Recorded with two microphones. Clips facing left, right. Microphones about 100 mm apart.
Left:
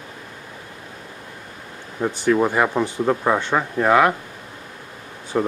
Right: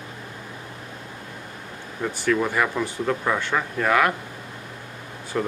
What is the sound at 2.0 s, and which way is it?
Speech, 25° left (ahead or behind).